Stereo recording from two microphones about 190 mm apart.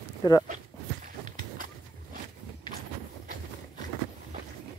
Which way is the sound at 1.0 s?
45° right (ahead or behind).